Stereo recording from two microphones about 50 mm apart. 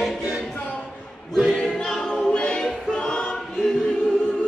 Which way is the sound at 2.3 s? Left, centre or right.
Centre.